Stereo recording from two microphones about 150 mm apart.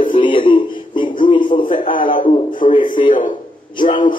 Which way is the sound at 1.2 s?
35° left (ahead or behind).